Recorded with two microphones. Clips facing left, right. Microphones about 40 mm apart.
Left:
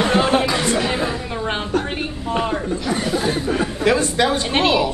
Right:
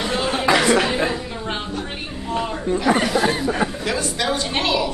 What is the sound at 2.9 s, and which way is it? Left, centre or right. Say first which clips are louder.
Speech: right 6 dB; right.